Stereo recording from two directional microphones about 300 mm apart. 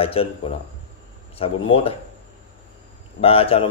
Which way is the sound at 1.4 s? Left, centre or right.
Centre.